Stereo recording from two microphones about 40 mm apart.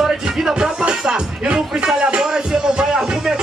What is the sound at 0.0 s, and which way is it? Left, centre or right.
Music, centre.